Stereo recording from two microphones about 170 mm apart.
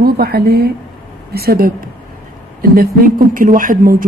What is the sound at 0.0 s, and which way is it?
A woman's voice, 65° right (ahead or behind).